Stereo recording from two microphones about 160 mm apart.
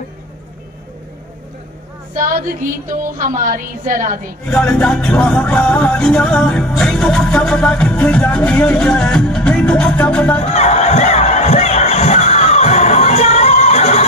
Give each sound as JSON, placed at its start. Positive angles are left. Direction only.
{"t": 3.2, "sound": "a woman's voice", "side_deg": -55}
{"t": 4.5, "sound": "music", "side_deg": 5}
{"t": 10.5, "sound": "crowd", "side_deg": 45}